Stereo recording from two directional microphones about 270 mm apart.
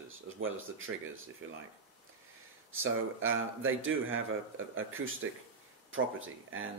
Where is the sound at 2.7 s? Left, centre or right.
Right.